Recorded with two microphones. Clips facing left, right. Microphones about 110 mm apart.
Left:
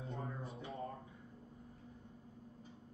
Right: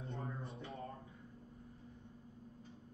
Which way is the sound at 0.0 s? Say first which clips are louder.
Left 1 dB; centre (ahead or behind).